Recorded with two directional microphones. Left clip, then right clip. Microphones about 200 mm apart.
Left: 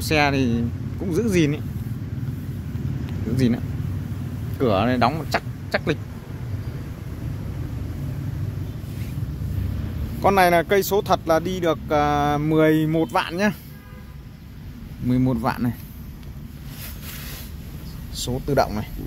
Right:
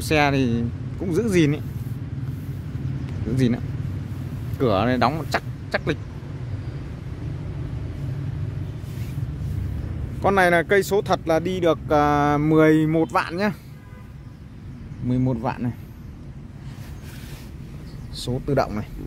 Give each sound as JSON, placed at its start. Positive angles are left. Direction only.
{"t": 0.0, "sound": "speech", "side_deg": -15}
{"t": 3.3, "sound": "speech", "side_deg": -15}
{"t": 5.7, "sound": "speech", "side_deg": 0}
{"t": 10.2, "sound": "speech", "side_deg": -15}
{"t": 15.0, "sound": "speech", "side_deg": -5}
{"t": 18.1, "sound": "speech", "side_deg": -10}